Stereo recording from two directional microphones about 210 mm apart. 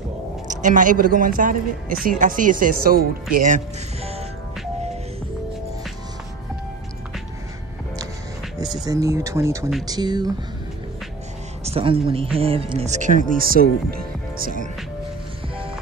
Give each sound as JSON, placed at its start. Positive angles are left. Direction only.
{"t": 0.5, "sound": "speech", "side_deg": -35}
{"t": 8.8, "sound": "speech", "side_deg": -15}
{"t": 11.6, "sound": "speech", "side_deg": -25}